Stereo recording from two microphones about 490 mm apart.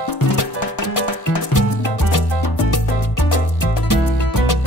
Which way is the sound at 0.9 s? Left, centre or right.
Left.